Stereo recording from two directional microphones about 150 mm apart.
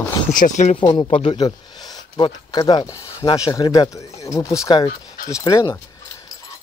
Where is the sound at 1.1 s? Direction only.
40° left (ahead or behind); by 5.8 s 25° left (ahead or behind).